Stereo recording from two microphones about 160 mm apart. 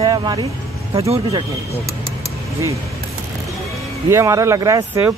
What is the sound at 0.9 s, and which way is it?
Speech, 35° right (ahead or behind).